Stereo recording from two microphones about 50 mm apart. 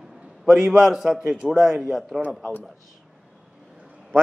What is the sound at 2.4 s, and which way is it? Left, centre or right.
Speech, left.